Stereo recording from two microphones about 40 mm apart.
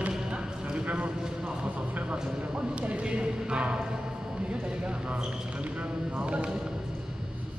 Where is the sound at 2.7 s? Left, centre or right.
Right.